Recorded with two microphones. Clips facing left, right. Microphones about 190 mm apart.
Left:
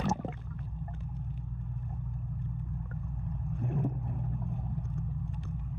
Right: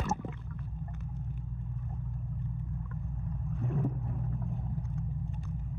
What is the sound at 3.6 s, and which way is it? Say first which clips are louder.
Vehicle: even; 55° left (ahead or behind).